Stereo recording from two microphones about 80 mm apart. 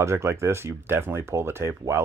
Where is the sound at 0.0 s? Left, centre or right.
Right.